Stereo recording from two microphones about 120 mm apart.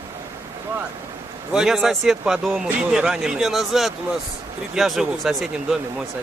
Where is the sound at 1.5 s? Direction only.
5° right (ahead or behind).